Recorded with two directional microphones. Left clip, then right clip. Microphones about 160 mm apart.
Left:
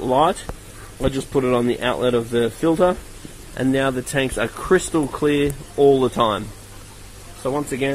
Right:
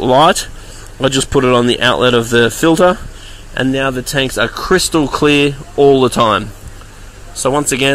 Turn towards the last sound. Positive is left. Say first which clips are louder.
# right 9 dB
turn(degrees=-15)  # may be behind; listen again after turning